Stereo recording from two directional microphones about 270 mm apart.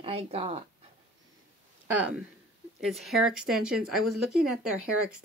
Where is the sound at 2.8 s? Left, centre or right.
Centre.